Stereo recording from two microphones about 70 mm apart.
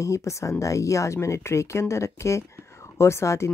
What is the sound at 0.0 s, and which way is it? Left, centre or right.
Speech, left.